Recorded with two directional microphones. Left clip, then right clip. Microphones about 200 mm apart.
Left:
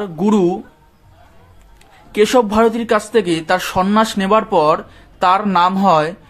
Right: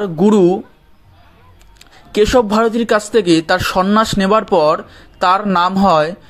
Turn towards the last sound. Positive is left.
turn(degrees=-20)  # may be behind; listen again after turning